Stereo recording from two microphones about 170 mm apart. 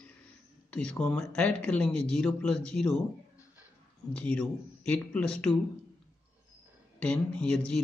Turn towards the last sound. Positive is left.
turn(degrees=5)  # may be behind; listen again after turning